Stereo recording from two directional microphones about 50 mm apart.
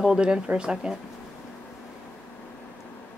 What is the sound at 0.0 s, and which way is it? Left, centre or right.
Speech, centre.